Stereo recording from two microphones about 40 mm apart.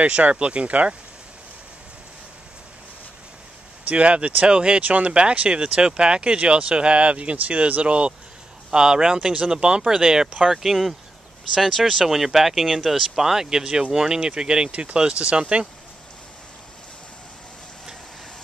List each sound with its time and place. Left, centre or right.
0.0 s speech: right
3.9 s speech: right
4.8 s speech: right
8.7 s speech: centre
14.7 s speech: right